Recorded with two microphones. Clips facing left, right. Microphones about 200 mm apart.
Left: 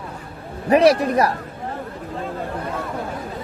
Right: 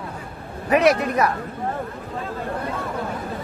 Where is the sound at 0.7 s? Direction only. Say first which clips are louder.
Left 3 dB; 35° left (ahead or behind).